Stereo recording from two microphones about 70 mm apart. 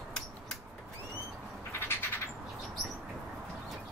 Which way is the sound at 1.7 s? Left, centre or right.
Left.